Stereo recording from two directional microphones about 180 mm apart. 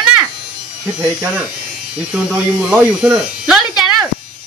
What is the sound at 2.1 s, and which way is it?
Speech, 5° right (ahead or behind).